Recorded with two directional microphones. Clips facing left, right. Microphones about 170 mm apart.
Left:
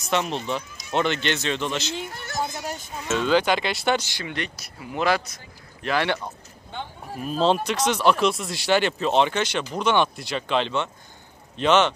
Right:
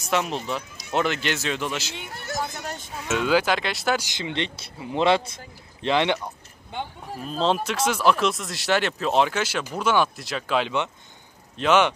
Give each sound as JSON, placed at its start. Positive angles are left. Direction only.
{"t": 0.1, "sound": "speech", "side_deg": -5}
{"t": 2.4, "sound": "speech", "side_deg": 10}
{"t": 3.0, "sound": "speech", "side_deg": -10}
{"t": 4.0, "sound": "speech", "side_deg": -20}
{"t": 7.2, "sound": "speech", "side_deg": 5}